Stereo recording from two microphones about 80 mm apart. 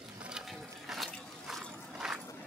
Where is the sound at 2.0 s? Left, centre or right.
Centre.